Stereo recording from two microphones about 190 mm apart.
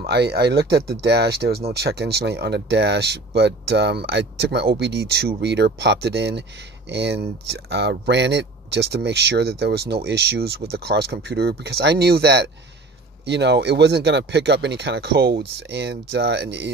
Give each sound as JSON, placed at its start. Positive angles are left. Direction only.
{"t": 0.0, "sound": "speech", "side_deg": -60}